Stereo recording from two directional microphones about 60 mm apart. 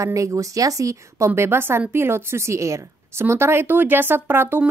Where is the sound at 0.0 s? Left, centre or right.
Right.